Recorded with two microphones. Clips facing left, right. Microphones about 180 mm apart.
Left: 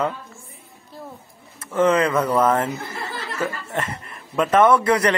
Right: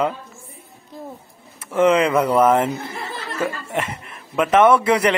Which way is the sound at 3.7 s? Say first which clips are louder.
Right 2 dB; 10° right (ahead or behind).